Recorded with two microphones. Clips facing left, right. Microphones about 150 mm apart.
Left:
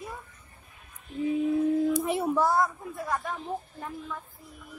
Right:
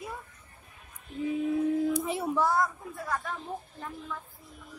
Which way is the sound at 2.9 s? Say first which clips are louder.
Left 3 dB; 15° left (ahead or behind).